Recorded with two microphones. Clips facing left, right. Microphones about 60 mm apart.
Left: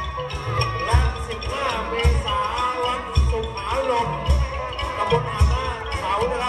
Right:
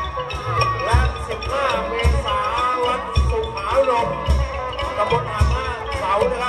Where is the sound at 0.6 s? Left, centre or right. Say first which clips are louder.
Right 4 dB; right.